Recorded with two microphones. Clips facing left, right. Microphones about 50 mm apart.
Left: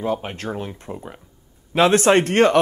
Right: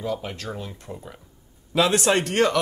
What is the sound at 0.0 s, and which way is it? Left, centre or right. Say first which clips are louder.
Speech: left 4 dB; left.